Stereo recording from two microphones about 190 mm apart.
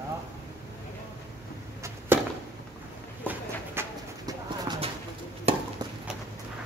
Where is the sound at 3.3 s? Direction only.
15° right (ahead or behind).